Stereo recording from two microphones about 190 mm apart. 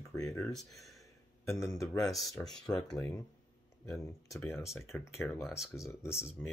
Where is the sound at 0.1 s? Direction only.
15° left (ahead or behind).